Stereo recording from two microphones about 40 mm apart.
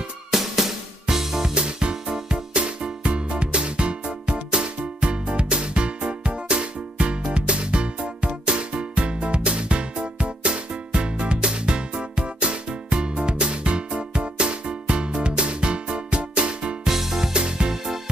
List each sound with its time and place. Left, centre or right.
0.3 s music: centre
1.5 s music: right
16.8 s music: centre
17.3 s music: right